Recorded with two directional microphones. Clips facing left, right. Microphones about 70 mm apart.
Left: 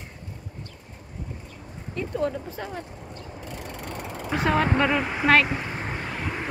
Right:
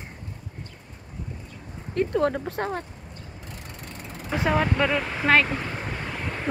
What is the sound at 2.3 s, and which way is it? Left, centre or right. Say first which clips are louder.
Speech: right 5 dB; right.